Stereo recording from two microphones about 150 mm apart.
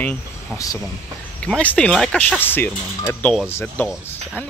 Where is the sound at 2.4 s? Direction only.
15° left (ahead or behind).